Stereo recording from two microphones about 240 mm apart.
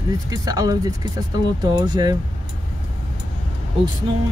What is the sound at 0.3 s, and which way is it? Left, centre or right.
Speech, centre.